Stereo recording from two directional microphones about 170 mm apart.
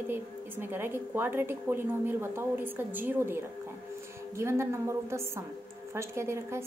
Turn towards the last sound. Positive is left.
turn(degrees=-15)  # may be behind; listen again after turning